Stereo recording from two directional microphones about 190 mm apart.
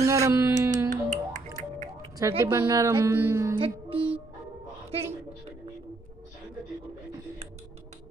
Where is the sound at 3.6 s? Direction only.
30° right (ahead or behind).